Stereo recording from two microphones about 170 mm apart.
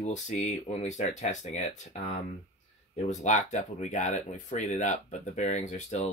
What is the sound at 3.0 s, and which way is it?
Speech, 45° left (ahead or behind).